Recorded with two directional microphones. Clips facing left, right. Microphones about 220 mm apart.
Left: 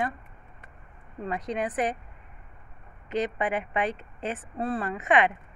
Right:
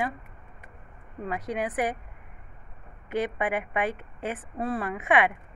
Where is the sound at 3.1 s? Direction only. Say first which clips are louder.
Even; 10° right (ahead or behind).